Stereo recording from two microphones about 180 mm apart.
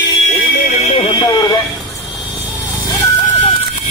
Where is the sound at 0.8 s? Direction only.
30° left (ahead or behind).